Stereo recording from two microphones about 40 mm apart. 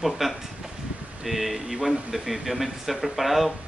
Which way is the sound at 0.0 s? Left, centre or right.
Centre.